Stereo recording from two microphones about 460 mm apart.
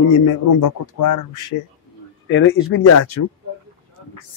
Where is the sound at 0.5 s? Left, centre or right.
Left.